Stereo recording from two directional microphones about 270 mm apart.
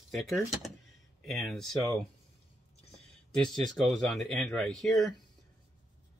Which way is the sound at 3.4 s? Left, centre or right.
Centre.